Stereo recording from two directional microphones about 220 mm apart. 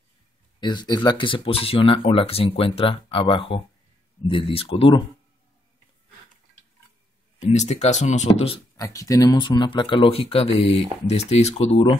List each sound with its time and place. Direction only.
0.6 s speech: 20° left (ahead or behind)
7.3 s speech: 30° left (ahead or behind)